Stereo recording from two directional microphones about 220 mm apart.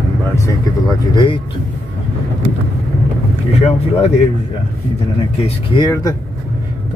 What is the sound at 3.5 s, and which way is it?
Boat, 30° left (ahead or behind).